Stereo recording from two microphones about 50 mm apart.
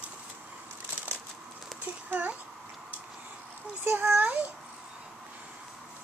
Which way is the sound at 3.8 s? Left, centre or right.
Right.